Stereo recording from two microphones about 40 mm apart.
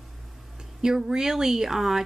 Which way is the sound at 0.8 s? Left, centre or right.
Centre.